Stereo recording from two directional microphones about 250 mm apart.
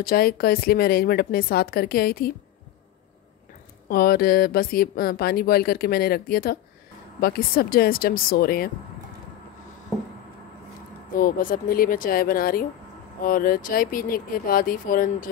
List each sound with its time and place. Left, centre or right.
0.0 s a woman's voice: left
3.9 s a woman's voice: left
11.1 s a woman's voice: left